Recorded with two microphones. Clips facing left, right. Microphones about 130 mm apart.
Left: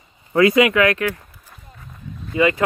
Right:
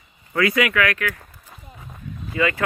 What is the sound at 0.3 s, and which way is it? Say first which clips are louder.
Speech: left 6 dB; 25° left (ahead or behind).